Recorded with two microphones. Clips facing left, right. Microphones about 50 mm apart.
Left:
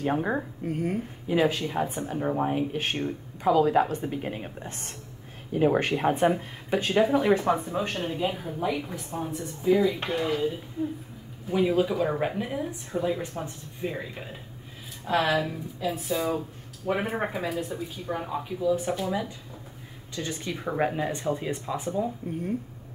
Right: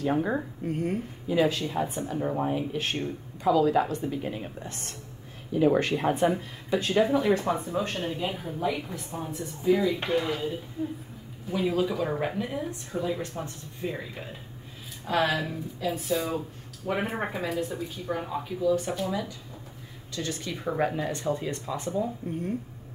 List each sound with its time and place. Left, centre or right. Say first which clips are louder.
0.7 s speech: even; centre
1.4 s speech: right 1 dB; left; by 10.4 s centre
11.5 s speech: left 3 dB; centre